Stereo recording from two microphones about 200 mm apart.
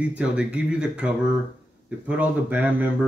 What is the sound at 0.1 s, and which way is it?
Speech, 5° right (ahead or behind).